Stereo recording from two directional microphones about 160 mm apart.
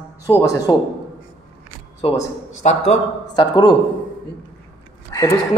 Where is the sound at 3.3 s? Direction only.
25° left (ahead or behind).